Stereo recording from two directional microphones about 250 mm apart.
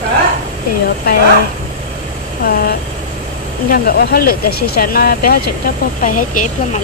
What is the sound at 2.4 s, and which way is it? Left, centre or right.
Speech, left.